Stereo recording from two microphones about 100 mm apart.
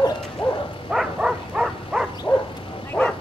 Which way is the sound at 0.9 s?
5° right (ahead or behind).